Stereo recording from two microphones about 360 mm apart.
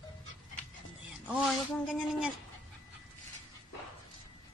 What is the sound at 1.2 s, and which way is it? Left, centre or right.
Speech, centre.